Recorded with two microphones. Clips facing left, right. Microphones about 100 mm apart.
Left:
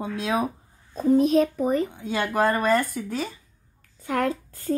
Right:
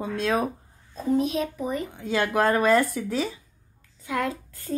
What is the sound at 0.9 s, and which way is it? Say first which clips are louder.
A child's voice: left 5 dB; 40° left (ahead or behind).